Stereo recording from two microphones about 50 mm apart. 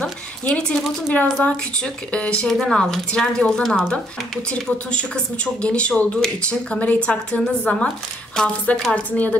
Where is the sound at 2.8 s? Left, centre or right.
Centre.